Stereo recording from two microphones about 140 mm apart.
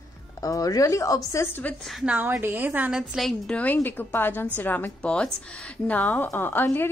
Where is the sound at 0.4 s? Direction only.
25° left (ahead or behind); by 2.1 s centre (ahead or behind).